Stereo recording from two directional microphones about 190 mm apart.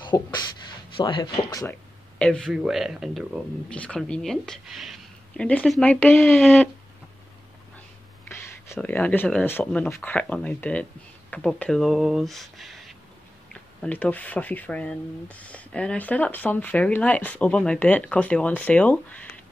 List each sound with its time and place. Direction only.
0.0 s a sound: 25° left (ahead or behind)
0.9 s speech: 25° left (ahead or behind)
2.1 s speech: 5° left (ahead or behind)
8.6 s speech: 10° left (ahead or behind)